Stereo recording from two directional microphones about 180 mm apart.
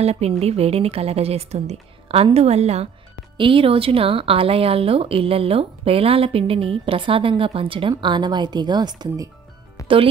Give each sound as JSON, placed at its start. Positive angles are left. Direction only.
{"t": 0.0, "sound": "speech", "side_deg": -35}
{"t": 9.8, "sound": "music", "side_deg": 20}